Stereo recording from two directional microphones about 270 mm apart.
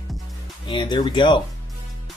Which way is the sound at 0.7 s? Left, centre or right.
Centre.